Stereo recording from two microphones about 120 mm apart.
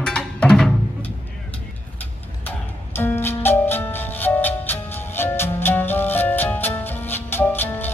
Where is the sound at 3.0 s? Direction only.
20° left (ahead or behind).